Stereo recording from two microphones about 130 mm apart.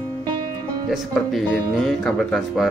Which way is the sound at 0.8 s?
Centre (ahead or behind).